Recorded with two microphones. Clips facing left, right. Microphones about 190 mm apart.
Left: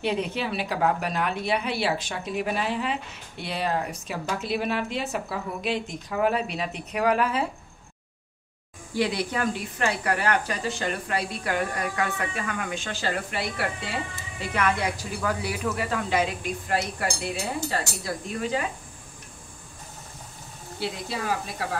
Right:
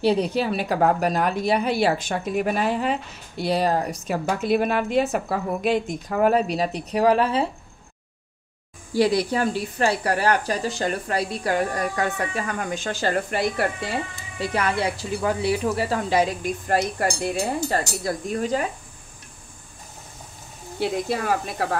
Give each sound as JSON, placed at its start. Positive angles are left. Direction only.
{"t": 0.0, "sound": "speech", "side_deg": -35}
{"t": 4.3, "sound": "speech", "side_deg": -50}
{"t": 8.9, "sound": "speech", "side_deg": -40}
{"t": 20.8, "sound": "speech", "side_deg": -50}